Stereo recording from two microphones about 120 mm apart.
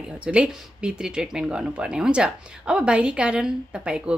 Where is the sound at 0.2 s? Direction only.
10° right (ahead or behind).